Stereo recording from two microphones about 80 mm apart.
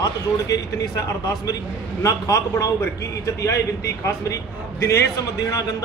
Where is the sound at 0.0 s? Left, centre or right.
Left.